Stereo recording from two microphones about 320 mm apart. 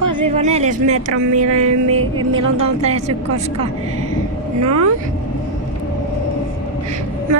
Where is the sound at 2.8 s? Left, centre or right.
Centre.